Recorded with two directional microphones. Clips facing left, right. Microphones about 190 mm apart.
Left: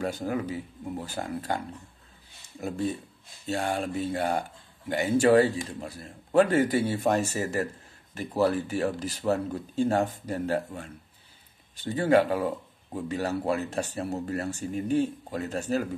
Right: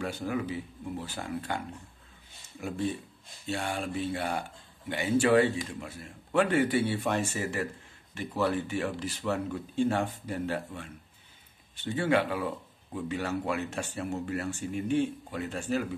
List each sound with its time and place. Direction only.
0.0 s speech: 40° left (ahead or behind)
3.4 s speech: 40° left (ahead or behind)